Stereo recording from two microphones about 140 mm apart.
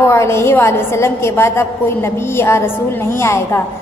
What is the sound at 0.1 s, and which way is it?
A woman's voice, 20° left (ahead or behind).